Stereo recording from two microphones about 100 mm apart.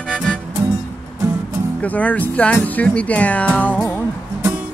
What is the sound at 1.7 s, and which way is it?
Speech, 15° left (ahead or behind).